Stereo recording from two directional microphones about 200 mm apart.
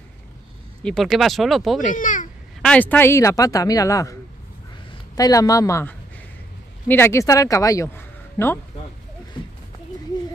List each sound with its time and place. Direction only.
0.8 s speech: centre (ahead or behind)
1.8 s a child's voice: 40° left (ahead or behind)
2.6 s speech: 5° left (ahead or behind)